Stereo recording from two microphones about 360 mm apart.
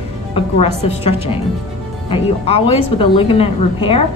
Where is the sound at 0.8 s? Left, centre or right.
Centre.